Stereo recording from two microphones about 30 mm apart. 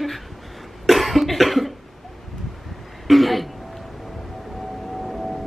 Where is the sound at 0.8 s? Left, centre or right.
Centre.